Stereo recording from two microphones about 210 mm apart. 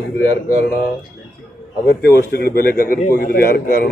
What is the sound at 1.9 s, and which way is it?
A man's voice, 50° left (ahead or behind).